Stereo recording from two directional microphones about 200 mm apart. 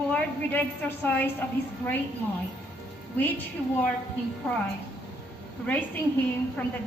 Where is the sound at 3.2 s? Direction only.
10° left (ahead or behind).